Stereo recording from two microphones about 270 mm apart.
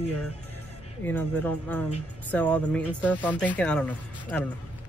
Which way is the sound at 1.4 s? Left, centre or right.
Centre.